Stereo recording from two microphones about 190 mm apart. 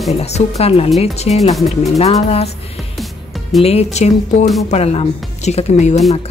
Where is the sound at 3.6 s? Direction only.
35° left (ahead or behind).